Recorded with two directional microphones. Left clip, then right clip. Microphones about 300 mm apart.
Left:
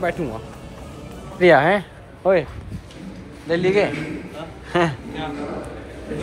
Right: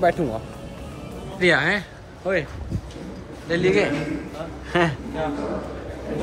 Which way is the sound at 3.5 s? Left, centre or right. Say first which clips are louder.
Left 1 dB; centre.